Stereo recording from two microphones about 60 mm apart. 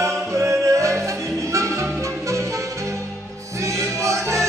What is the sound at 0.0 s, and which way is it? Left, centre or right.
Music, right.